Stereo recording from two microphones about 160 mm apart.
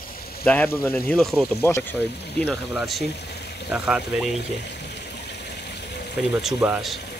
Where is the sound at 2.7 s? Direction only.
Centre (ahead or behind).